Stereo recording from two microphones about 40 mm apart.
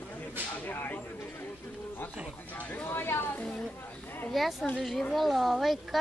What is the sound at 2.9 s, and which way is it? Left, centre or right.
Speech, left.